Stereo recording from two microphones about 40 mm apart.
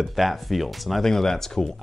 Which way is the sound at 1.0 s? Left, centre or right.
Centre.